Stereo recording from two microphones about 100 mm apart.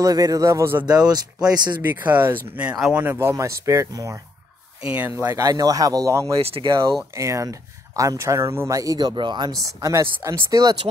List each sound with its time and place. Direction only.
0.0 s speech: 35° right (ahead or behind)
0.8 s speech: 40° right (ahead or behind)
1.9 s speech: 20° right (ahead or behind)
4.8 s speech: 15° right (ahead or behind)
5.1 s speech: 30° right (ahead or behind)
6.4 s speech: 60° right (ahead or behind)
7.2 s speech: 30° right (ahead or behind); by 9.5 s 50° right (ahead or behind)
9.8 s speech: 35° right (ahead or behind)